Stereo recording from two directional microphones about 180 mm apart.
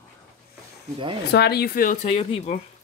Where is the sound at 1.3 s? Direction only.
65° left (ahead or behind); by 2.5 s 40° left (ahead or behind).